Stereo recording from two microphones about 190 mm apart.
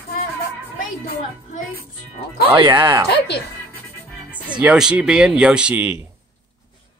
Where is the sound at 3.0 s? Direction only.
60° left (ahead or behind).